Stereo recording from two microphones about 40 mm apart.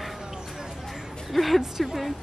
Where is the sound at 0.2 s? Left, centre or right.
Centre.